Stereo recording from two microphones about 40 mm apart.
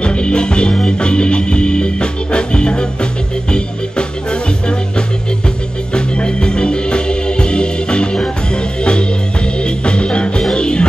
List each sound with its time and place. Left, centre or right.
0.0 s music: left
5.9 s organ: left
9.6 s music: left